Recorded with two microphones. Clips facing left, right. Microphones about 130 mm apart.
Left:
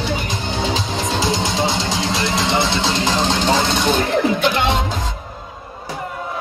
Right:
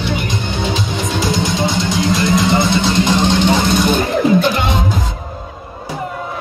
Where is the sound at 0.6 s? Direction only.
30° left (ahead or behind).